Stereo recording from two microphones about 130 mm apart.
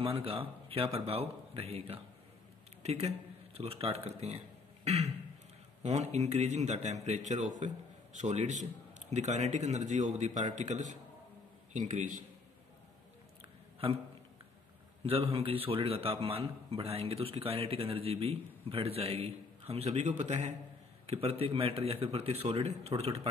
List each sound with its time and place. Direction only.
0.0 s a man's voice: 45° right (ahead or behind)
4.8 s a sound: 55° right (ahead or behind)
5.8 s a man's voice: 55° right (ahead or behind); by 12.2 s 75° right (ahead or behind)
13.4 s a sound: 45° right (ahead or behind)
15.0 s a man's voice: 45° right (ahead or behind); by 20.5 s 65° right (ahead or behind)
21.2 s a man's voice: 50° right (ahead or behind)